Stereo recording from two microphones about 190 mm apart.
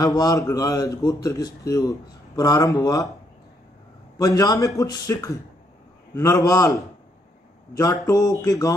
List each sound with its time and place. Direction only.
0.0 s a man's voice: 20° left (ahead or behind)
4.2 s a man's voice: 20° left (ahead or behind)